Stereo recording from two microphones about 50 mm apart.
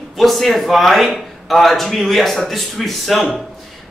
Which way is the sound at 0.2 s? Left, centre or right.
Centre.